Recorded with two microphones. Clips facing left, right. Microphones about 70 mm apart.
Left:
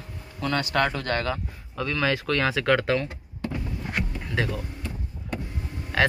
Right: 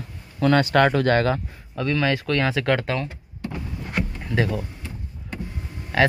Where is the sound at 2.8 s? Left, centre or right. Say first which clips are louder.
Left 2 dB; centre.